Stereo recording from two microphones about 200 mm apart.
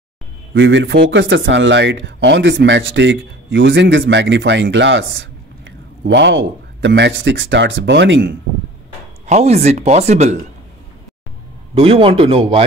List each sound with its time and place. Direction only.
0.6 s speech: 65° right (ahead or behind)
9.2 s speech: 35° right (ahead or behind)
11.7 s speech: 30° right (ahead or behind)